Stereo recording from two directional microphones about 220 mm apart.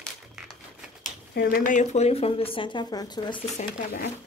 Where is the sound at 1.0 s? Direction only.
45° left (ahead or behind).